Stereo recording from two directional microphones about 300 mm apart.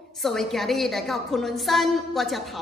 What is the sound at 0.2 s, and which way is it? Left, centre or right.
A woman's voice, centre.